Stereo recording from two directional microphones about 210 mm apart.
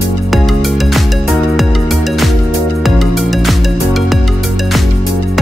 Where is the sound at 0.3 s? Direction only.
Centre (ahead or behind).